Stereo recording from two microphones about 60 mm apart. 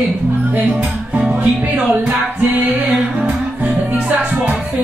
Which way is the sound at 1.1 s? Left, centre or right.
Centre.